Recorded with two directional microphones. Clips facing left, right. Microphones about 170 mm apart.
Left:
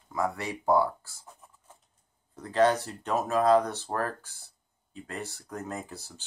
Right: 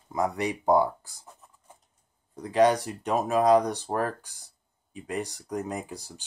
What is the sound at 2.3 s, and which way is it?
Speech, 15° right (ahead or behind).